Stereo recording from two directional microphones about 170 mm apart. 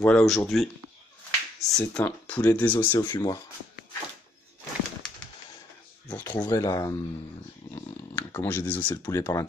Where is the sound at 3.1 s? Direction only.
25° left (ahead or behind).